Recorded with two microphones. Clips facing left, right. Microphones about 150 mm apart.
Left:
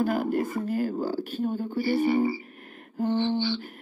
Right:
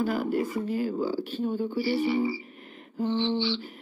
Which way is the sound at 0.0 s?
45° left (ahead or behind).